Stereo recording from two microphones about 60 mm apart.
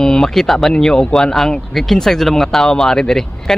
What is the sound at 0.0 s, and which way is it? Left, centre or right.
Speech, centre.